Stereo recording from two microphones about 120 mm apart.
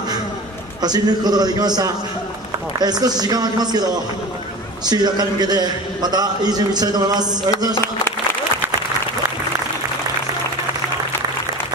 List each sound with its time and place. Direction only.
0.8 s a man's voice: 35° right (ahead or behind)